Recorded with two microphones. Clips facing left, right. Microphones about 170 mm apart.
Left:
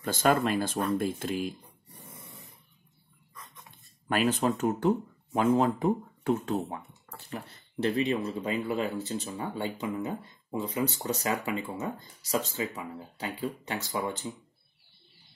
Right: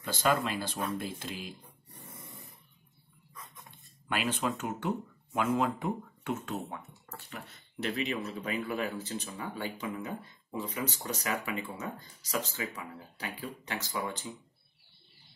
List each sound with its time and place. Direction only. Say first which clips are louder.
0.0 s speech: left 4 dB; 50° left (ahead or behind)
4.1 s speech: left 6 dB; 40° left (ahead or behind); by 14.1 s 25° left (ahead or behind)